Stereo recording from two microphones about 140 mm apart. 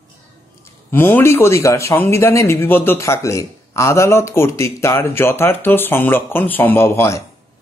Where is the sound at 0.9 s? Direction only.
15° left (ahead or behind).